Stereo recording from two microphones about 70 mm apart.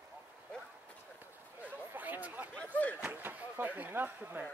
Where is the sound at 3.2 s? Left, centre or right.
Right.